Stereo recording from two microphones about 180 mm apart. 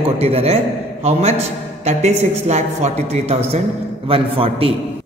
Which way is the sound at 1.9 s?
40° right (ahead or behind).